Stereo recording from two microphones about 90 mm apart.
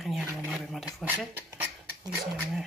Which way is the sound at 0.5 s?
Centre (ahead or behind).